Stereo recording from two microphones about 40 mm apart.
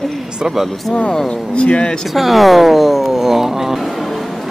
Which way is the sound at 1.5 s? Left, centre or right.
Left.